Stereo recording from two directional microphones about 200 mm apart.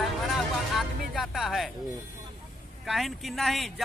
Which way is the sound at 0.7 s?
Centre (ahead or behind).